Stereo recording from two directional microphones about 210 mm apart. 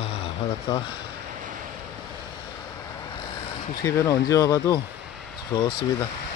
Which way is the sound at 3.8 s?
15° left (ahead or behind).